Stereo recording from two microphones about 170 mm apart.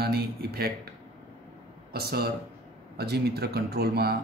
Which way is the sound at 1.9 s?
65° right (ahead or behind).